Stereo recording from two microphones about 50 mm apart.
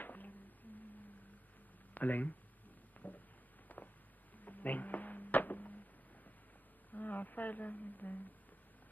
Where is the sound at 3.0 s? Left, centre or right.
Left.